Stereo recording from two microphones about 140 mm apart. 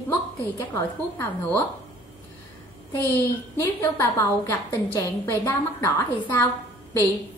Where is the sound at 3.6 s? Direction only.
15° left (ahead or behind).